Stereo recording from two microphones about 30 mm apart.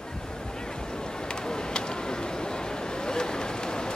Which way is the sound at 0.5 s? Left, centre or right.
Left.